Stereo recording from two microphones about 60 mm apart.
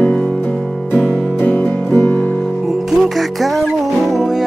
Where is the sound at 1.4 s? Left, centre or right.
Left.